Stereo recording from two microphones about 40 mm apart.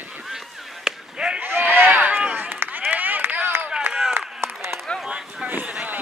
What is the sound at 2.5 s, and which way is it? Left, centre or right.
Run, right.